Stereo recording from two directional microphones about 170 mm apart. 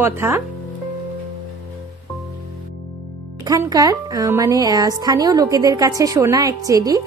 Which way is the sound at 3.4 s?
20° right (ahead or behind).